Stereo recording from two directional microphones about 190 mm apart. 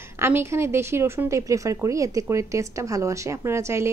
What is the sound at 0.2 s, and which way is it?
Speech, 15° right (ahead or behind).